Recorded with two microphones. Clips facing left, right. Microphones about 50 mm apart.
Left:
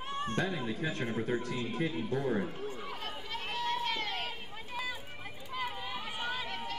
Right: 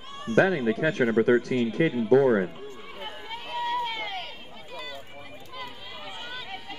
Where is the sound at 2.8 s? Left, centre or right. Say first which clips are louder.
Right 2 dB; centre.